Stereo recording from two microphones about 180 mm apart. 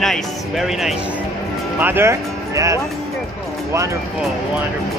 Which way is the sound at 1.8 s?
15° right (ahead or behind).